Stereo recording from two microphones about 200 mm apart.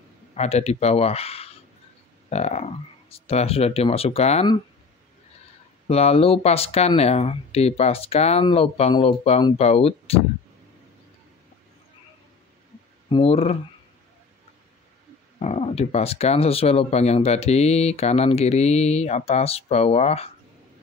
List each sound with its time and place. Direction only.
0.3 s speech: 35° left (ahead or behind)
5.9 s speech: 30° left (ahead or behind)
13.1 s speech: 30° left (ahead or behind)
15.3 s speech: 30° left (ahead or behind)